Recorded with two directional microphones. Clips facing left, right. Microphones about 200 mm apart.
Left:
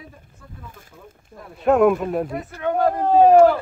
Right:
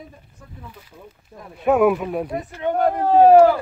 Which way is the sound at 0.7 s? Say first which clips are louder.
Right 1 dB; 50° left (ahead or behind).